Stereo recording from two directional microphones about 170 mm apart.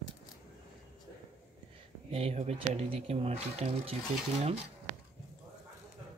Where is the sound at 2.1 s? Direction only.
35° right (ahead or behind).